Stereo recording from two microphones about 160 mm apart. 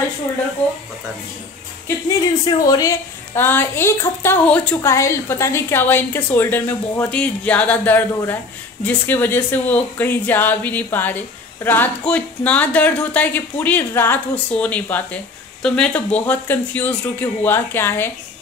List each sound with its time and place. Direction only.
2.4 s speech: 25° left (ahead or behind)